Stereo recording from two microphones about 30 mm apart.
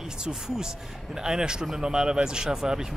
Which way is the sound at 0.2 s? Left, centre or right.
Right.